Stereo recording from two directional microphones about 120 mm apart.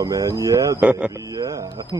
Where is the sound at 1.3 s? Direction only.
30° right (ahead or behind).